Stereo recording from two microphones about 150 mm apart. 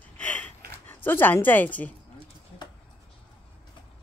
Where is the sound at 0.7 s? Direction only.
15° left (ahead or behind).